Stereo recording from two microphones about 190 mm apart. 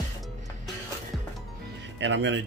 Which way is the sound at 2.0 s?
70° right (ahead or behind).